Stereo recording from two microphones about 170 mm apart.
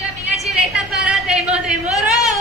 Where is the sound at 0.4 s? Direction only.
Centre (ahead or behind).